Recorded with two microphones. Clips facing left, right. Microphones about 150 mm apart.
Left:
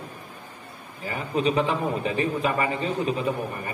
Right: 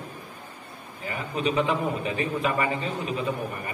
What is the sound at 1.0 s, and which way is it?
A man's voice, 35° left (ahead or behind).